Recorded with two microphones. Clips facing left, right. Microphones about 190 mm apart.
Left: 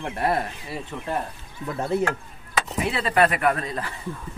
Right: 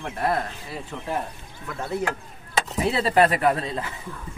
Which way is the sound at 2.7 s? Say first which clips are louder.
Right 3 dB; 35° right (ahead or behind).